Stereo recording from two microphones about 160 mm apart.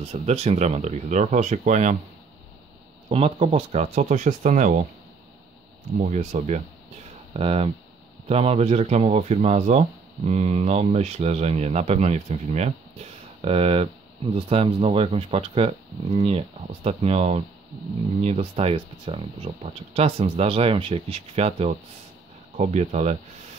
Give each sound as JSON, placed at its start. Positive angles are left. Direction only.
{"t": 0.1, "sound": "speech", "side_deg": -40}
{"t": 3.1, "sound": "speech", "side_deg": -40}
{"t": 5.9, "sound": "speech", "side_deg": -50}